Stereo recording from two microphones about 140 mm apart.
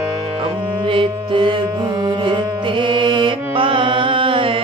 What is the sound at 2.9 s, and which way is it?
Music, 35° right (ahead or behind).